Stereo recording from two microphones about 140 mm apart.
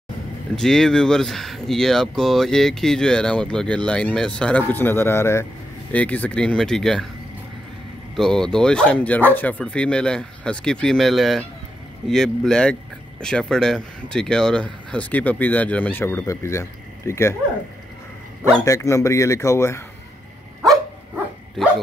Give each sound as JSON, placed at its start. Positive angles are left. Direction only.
{"t": 0.6, "sound": "speech", "side_deg": 5}
{"t": 8.2, "sound": "speech", "side_deg": 5}
{"t": 18.6, "sound": "speech", "side_deg": 20}